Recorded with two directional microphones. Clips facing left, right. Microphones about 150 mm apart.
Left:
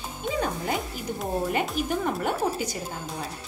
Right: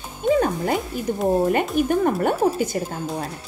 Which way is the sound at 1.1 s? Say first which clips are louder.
Right 8 dB; 55° right (ahead or behind).